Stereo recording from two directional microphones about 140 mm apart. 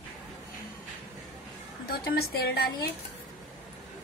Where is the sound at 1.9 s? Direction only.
90° left.